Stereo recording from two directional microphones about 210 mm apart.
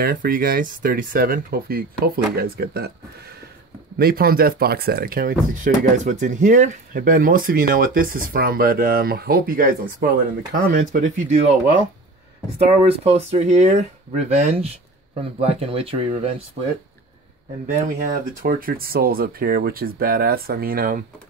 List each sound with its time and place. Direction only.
0.0 s speech: 40° right (ahead or behind)
12.9 s speech: 30° right (ahead or behind)
17.8 s speech: 45° right (ahead or behind)